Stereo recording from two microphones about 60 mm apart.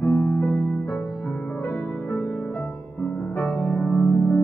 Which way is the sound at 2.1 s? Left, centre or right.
Left.